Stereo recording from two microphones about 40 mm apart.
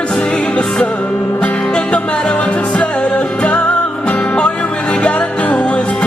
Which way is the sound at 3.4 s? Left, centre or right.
Left.